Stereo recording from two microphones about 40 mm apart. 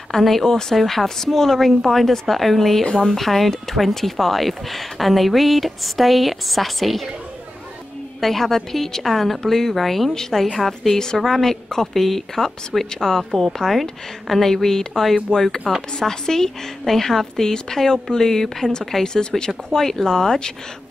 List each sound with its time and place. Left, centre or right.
0.1 s a woman's voice: centre
2.8 s speech: centre
3.1 s speech: centre
8.2 s a woman's voice: centre